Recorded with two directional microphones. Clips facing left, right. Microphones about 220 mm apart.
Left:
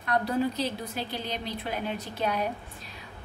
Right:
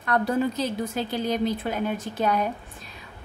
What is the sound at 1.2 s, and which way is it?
A woman's voice, 45° right (ahead or behind).